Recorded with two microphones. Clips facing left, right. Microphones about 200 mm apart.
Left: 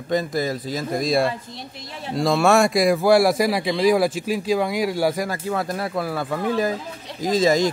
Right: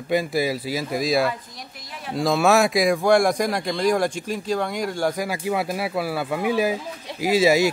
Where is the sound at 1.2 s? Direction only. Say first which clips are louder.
Left 1 dB; 25° left (ahead or behind).